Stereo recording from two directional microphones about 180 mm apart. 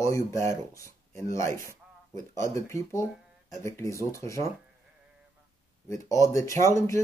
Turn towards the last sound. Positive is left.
turn(degrees=15)  # may be behind; listen again after turning